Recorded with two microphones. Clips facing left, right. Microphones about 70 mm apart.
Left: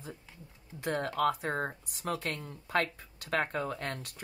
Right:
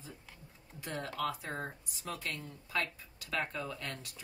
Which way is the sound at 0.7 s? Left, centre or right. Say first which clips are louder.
Left 7 dB; left.